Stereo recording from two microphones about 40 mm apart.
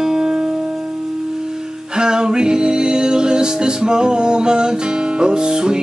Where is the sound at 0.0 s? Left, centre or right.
Centre.